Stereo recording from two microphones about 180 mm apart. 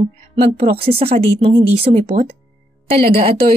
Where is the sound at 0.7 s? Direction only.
30° right (ahead or behind).